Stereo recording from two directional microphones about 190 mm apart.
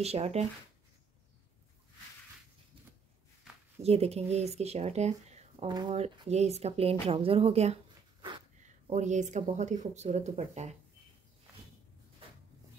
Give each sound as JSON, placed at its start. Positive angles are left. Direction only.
{"t": 0.0, "sound": "speech", "side_deg": -35}
{"t": 3.8, "sound": "speech", "side_deg": -35}
{"t": 5.7, "sound": "speech", "side_deg": -20}
{"t": 5.9, "sound": "speech", "side_deg": -35}